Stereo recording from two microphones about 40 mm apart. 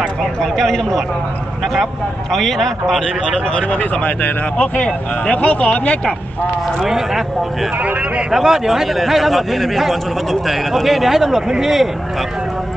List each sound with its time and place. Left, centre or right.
0.4 s speech: centre
2.3 s a man's voice: centre
3.6 s speech: left
4.8 s speech: left
6.8 s speech: centre
8.3 s a man's voice: centre